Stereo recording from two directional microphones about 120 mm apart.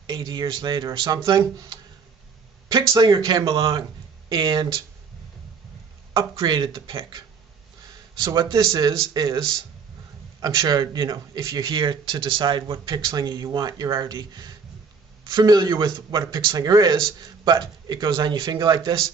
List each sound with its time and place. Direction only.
0.0 s a man's voice: 40° right (ahead or behind)
2.9 s a man's voice: 30° right (ahead or behind)
3.4 s a man's voice: 50° right (ahead or behind)
6.1 s a man's voice: 40° right (ahead or behind)